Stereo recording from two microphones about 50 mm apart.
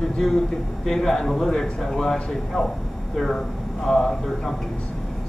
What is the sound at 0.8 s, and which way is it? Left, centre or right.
A man's voice, centre.